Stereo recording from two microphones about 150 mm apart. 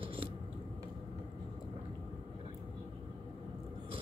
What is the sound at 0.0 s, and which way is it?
Scissors, 35° right (ahead or behind).